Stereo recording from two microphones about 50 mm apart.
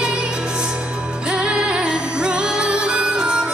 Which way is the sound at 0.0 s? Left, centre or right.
Centre.